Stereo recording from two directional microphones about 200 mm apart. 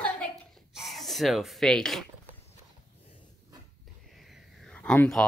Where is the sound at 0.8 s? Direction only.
Centre (ahead or behind).